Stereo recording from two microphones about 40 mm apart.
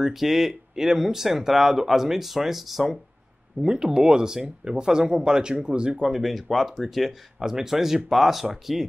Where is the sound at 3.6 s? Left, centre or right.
Centre.